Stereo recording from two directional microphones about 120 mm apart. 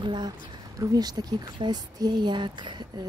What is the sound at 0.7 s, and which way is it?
A woman's voice, 35° right (ahead or behind).